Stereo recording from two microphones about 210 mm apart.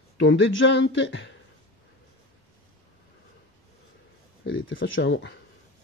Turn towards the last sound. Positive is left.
turn(degrees=60)  # may be behind; listen again after turning